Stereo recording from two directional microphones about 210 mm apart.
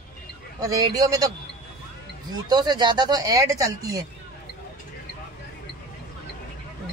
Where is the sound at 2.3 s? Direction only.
20° right (ahead or behind).